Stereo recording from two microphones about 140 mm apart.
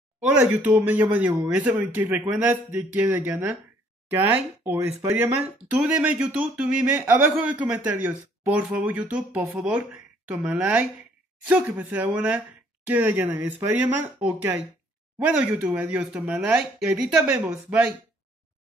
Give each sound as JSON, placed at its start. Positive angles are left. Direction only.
{"t": 0.2, "sound": "speech", "side_deg": -5}
{"t": 5.8, "sound": "speech", "side_deg": -10}